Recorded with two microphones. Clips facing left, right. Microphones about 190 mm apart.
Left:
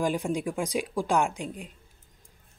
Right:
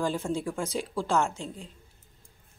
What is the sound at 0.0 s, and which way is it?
Speech, 15° left (ahead or behind).